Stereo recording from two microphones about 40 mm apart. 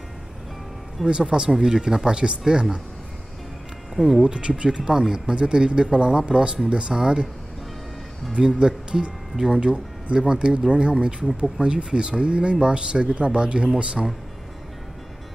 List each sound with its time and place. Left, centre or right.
1.0 s speech: right
1.5 s speech: centre
4.2 s speech: right
8.4 s speech: centre
11.2 s speech: centre
11.6 s speech: right